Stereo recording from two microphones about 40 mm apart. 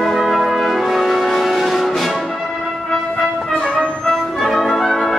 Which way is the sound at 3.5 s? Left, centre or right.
Left.